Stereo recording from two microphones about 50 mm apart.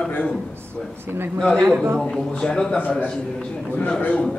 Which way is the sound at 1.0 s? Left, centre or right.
Right.